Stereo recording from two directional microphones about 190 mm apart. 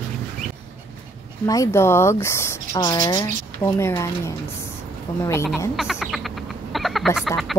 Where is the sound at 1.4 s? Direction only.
15° left (ahead or behind).